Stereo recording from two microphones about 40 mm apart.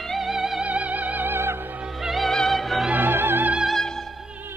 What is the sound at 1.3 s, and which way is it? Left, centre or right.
Music, right.